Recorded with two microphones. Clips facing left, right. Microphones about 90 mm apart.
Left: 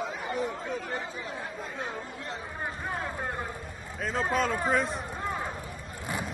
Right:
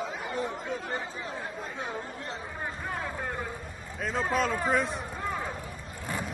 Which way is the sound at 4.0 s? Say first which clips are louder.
Even; centre (ahead or behind).